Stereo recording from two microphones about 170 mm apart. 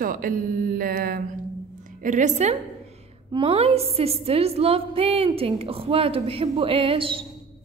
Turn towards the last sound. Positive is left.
turn(degrees=-30)  # may be behind; listen again after turning